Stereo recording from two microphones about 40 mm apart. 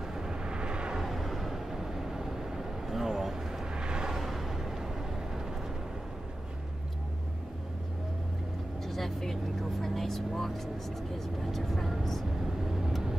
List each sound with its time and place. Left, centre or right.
0.1 s vehicle: centre
0.9 s vehicle: centre
3.7 s a sound: right
4.1 s vehicle: centre
8.8 s vehicle: centre
11.5 s speech: centre